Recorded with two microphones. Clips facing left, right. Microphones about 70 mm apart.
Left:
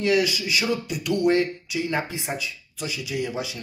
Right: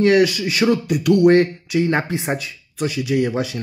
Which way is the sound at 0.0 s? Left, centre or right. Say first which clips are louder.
Right 7 dB; right.